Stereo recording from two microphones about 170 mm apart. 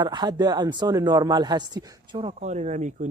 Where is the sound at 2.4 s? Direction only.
45° right (ahead or behind).